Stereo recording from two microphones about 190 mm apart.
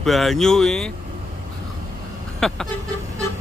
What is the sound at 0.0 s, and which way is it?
Speech, centre (ahead or behind).